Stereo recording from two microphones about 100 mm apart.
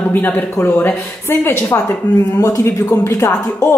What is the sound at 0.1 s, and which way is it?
Speech, 20° left (ahead or behind).